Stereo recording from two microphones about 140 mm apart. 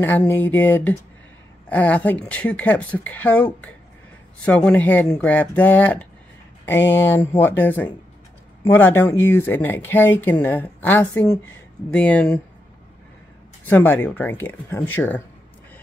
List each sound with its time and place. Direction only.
0.0 s speech: 15° left (ahead or behind)
4.5 s speech: 10° left (ahead or behind)
13.7 s speech: 15° left (ahead or behind)